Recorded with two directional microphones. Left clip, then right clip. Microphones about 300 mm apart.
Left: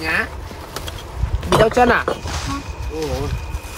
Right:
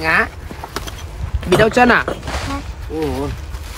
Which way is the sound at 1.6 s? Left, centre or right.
Right.